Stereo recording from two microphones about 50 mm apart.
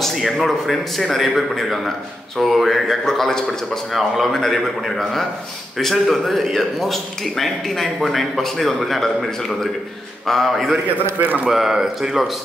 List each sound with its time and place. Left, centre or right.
0.1 s a man's voice: centre
11.1 s speech: right
11.4 s speech: centre